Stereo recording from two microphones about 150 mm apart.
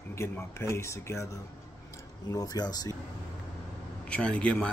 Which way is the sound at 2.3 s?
25° left (ahead or behind).